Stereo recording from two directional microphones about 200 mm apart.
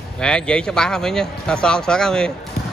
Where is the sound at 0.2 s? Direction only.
5° left (ahead or behind).